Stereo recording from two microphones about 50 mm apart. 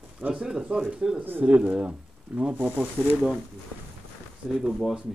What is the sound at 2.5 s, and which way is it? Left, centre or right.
Speech, right.